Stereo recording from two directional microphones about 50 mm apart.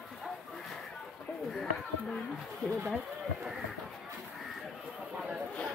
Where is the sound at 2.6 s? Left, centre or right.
Centre.